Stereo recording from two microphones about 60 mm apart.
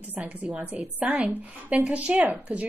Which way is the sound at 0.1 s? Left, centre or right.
Right.